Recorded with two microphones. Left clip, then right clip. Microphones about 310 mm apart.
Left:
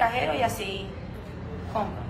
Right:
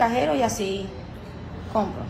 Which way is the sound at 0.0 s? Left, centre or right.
Centre.